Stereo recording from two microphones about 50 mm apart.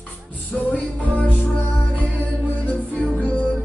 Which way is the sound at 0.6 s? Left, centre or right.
Left.